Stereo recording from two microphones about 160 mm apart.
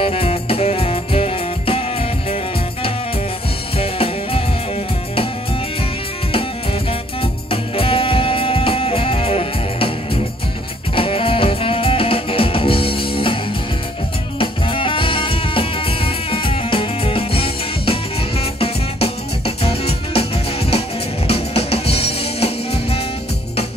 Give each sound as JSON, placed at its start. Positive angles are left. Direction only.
{"t": 0.0, "sound": "music", "side_deg": 40}
{"t": 3.7, "sound": "drum kit", "side_deg": 35}
{"t": 6.3, "sound": "music", "side_deg": 35}
{"t": 11.0, "sound": "music", "side_deg": 35}
{"t": 14.4, "sound": "music", "side_deg": 35}